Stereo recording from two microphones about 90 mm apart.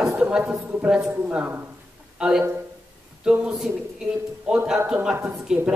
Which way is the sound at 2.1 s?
10° right (ahead or behind).